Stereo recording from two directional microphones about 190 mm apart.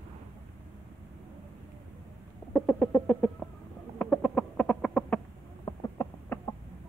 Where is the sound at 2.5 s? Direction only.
5° left (ahead or behind).